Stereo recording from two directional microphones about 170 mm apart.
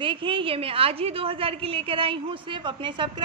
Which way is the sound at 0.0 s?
30° right (ahead or behind).